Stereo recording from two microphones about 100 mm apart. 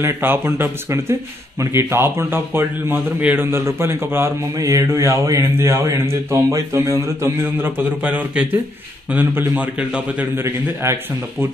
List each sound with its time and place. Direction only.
0.0 s a man's voice: 25° right (ahead or behind)
4.6 s speech: 35° right (ahead or behind)
7.6 s a man's voice: 20° right (ahead or behind)
10.3 s a man's voice: 25° right (ahead or behind)